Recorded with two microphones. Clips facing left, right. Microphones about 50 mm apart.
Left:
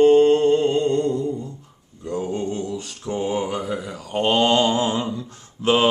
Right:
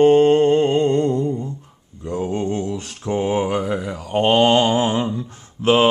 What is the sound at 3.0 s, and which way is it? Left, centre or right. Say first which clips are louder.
Mantra: right 4 dB; right.